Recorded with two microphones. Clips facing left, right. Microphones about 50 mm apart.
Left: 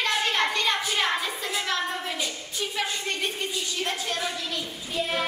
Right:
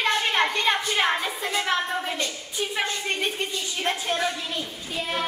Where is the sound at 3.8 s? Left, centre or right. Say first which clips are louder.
Right 6 dB; right.